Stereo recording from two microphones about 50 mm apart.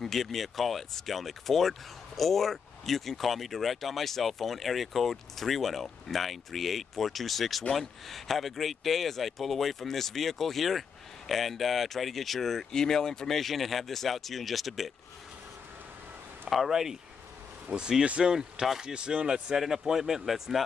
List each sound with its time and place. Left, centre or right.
0.0 s speech: centre
16.4 s speech: centre; by 18.3 s right
18.3 s speech: centre